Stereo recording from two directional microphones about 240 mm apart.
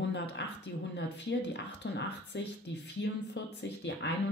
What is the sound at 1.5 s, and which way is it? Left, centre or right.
Speech, left.